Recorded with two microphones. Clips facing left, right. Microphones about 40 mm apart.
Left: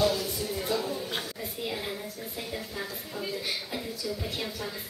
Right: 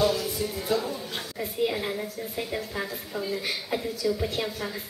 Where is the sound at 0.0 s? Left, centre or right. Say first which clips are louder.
Right 2 dB; centre.